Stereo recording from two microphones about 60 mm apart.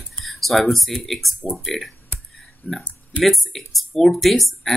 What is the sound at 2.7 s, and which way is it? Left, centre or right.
Speech, left.